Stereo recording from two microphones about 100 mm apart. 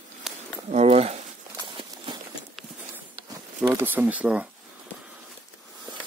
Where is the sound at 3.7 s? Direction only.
25° right (ahead or behind).